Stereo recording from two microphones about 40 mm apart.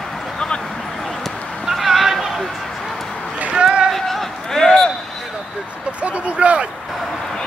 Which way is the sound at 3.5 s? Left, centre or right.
Right.